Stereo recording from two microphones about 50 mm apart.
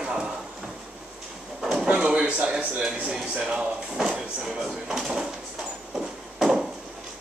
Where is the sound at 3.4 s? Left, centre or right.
Centre.